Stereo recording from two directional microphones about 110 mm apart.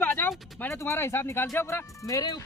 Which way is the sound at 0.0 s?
20° left (ahead or behind).